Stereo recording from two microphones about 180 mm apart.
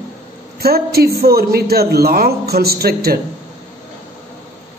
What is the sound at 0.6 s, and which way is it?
A man's voice, 60° right (ahead or behind).